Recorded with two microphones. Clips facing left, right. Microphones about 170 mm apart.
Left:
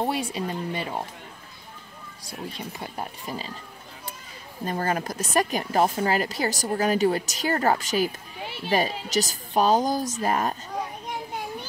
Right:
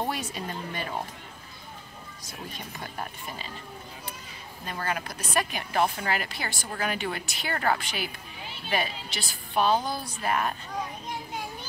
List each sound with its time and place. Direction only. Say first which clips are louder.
0.0 s speech: left 5 dB; 30° left (ahead or behind)
3.3 s speech: left 6 dB; 35° left (ahead or behind)
4.6 s speech: left 6 dB; 40° left (ahead or behind)